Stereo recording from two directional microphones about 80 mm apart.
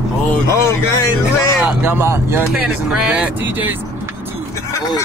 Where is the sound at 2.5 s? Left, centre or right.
Centre.